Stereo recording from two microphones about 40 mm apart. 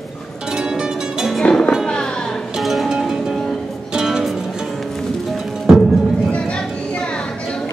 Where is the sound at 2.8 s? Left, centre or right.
Centre.